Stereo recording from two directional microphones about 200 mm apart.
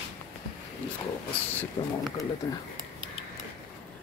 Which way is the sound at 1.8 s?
20° left (ahead or behind).